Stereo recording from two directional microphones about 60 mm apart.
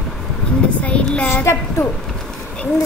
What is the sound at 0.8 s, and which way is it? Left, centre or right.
Child singing, centre.